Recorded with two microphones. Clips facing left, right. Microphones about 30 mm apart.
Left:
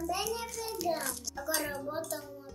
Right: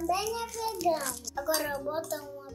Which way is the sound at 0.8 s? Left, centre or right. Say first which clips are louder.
Right 4 dB; centre.